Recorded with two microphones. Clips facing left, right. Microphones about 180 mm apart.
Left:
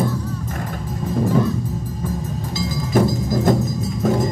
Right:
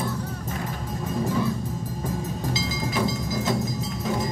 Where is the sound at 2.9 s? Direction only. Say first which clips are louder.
Left 10 dB; 50° left (ahead or behind).